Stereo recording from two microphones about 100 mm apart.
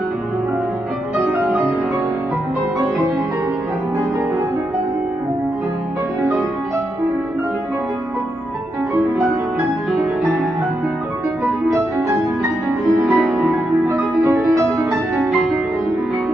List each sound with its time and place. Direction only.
13.0 s music: 10° right (ahead or behind)